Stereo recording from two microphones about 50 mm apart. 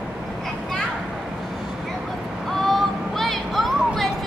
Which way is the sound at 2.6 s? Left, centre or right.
Centre.